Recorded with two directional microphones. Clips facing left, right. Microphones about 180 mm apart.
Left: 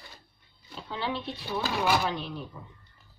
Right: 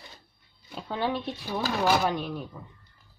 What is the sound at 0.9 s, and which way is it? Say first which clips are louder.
Speech: right 4 dB; 50° right (ahead or behind).